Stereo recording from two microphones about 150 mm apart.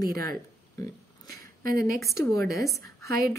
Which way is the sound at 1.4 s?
75° right (ahead or behind).